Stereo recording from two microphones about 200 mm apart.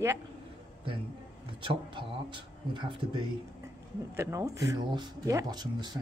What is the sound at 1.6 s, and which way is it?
Speech, 25° right (ahead or behind).